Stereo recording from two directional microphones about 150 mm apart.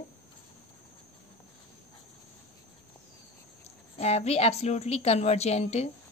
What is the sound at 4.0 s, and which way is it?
A woman's voice, 45° left (ahead or behind).